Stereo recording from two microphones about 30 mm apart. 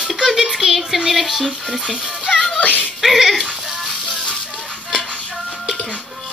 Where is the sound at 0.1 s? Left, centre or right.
Centre.